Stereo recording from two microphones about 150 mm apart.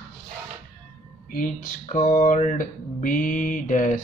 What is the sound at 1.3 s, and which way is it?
Speech, 65° left (ahead or behind).